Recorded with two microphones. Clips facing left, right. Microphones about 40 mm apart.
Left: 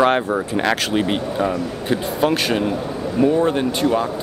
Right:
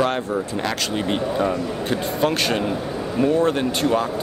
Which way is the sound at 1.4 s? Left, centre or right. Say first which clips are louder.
Left 1 dB; centre.